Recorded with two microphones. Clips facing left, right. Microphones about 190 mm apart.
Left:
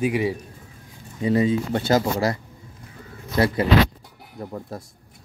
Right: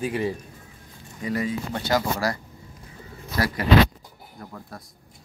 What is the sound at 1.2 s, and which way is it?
Speech, 25° left (ahead or behind).